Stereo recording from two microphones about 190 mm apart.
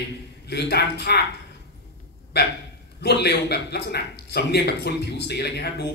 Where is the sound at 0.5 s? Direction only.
60° left (ahead or behind).